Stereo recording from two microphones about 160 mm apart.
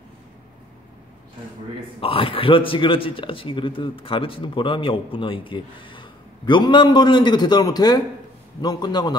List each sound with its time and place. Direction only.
2.0 s a man's voice: 35° left (ahead or behind)